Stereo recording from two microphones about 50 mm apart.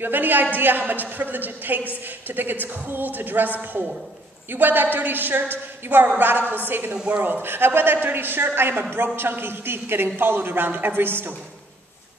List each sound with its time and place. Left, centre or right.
0.0 s a woman's voice: right
4.5 s a woman's voice: right
6.9 s a man's voice: right